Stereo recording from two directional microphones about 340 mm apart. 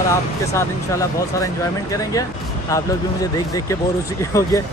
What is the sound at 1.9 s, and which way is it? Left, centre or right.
Speech, centre.